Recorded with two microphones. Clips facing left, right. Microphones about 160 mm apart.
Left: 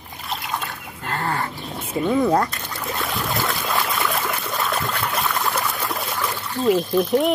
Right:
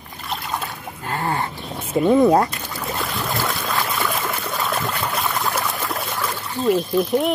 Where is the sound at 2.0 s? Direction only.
20° right (ahead or behind).